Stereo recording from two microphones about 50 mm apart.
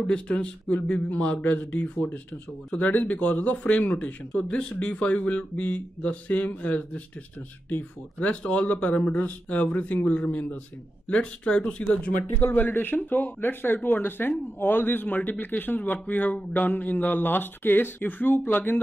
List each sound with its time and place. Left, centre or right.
0.1 s speech: left
4.3 s speech: centre
12.5 s speech: left